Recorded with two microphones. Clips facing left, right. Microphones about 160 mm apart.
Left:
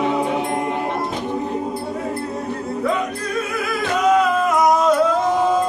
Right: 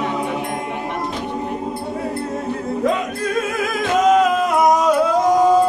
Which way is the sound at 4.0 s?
45° right (ahead or behind).